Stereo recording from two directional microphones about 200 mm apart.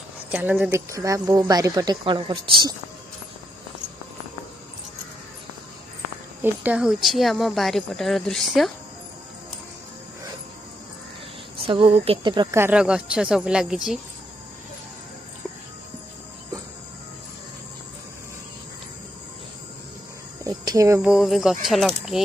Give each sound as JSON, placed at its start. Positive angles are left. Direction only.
{"t": 0.3, "sound": "speech", "side_deg": -10}
{"t": 6.4, "sound": "speech", "side_deg": -10}
{"t": 11.6, "sound": "speech", "side_deg": -25}
{"t": 20.4, "sound": "cricket", "side_deg": -15}
{"t": 21.1, "sound": "speech", "side_deg": 0}